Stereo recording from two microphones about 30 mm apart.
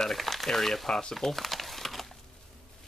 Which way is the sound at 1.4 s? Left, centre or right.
Centre.